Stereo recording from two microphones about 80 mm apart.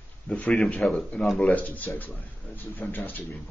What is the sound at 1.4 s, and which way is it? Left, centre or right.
A man's voice, centre.